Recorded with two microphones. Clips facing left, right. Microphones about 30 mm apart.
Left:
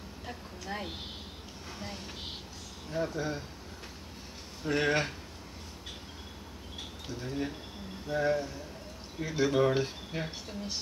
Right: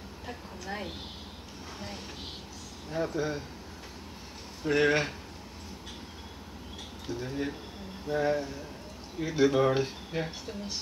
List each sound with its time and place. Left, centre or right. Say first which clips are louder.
0.3 s a sound: right 1 dB; centre
2.9 s speech: right 2 dB; centre
4.6 s speech: right 3 dB; centre
7.1 s speech: right 2 dB; centre